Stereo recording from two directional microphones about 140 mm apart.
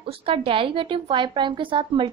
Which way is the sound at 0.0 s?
40° right (ahead or behind).